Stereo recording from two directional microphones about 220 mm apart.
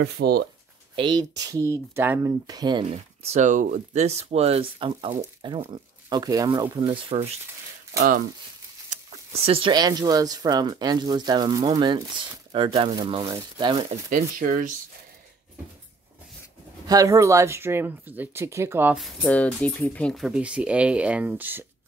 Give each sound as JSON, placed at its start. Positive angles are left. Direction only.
{"t": 0.0, "sound": "speech", "side_deg": -50}
{"t": 0.9, "sound": "speech", "side_deg": -20}
{"t": 8.9, "sound": "speech", "side_deg": -25}
{"t": 14.1, "sound": "speech", "side_deg": -40}
{"t": 16.8, "sound": "speech", "side_deg": -15}